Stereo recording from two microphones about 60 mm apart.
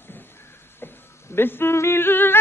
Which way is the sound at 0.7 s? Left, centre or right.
Left.